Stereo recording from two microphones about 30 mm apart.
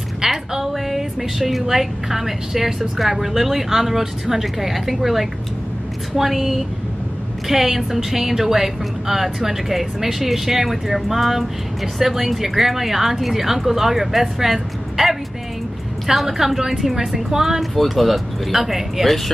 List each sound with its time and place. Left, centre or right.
0.2 s music: right
0.8 s a woman's voice: centre
17.6 s speech: centre
19.0 s speech: centre